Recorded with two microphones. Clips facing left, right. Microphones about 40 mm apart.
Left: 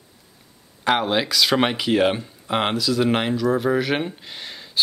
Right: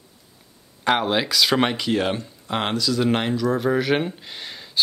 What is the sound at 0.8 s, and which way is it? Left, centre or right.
Speech, centre.